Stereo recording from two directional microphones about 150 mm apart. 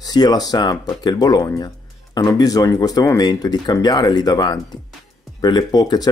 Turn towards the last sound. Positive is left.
turn(degrees=25)  # may be behind; listen again after turning